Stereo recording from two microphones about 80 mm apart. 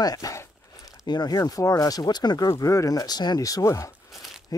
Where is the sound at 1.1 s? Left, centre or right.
Left.